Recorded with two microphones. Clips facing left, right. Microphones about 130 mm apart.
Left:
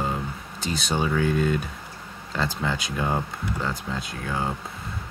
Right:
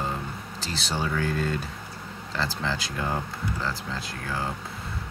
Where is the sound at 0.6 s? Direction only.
15° left (ahead or behind).